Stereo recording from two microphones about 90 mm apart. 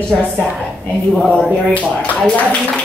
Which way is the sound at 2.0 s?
10° left (ahead or behind).